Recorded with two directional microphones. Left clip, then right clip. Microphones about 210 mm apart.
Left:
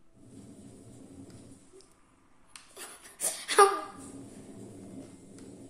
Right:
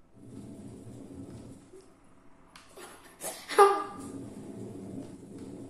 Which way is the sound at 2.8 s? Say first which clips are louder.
Left 3 dB; 35° left (ahead or behind).